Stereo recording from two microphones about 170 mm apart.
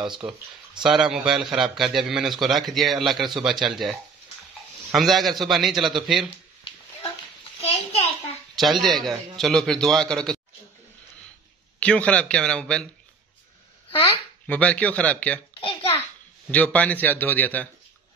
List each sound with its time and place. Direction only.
0.0 s a man's voice: 5° right (ahead or behind)
4.9 s a man's voice: centre (ahead or behind)
7.6 s a sound: 40° left (ahead or behind)
8.5 s a man's voice: centre (ahead or behind)
11.8 s a man's voice: 5° left (ahead or behind)
14.5 s a man's voice: 10° left (ahead or behind)
16.4 s a man's voice: 10° left (ahead or behind)